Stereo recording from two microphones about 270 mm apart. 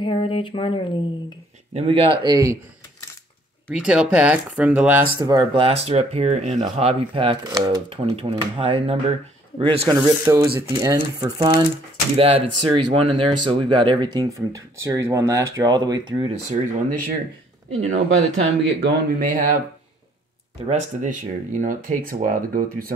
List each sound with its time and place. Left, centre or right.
0.0 s speech: centre
1.7 s speech: right
3.6 s speech: centre
17.6 s speech: right
19.1 s speech: right
20.6 s speech: right